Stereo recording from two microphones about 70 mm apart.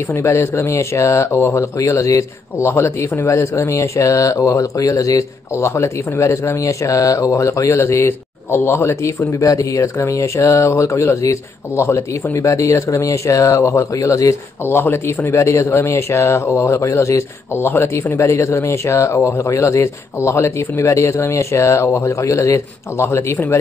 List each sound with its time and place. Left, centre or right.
0.1 s speech: left
14.6 s speech: left